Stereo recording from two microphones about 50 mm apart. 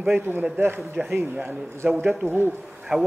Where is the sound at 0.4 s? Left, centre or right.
Right.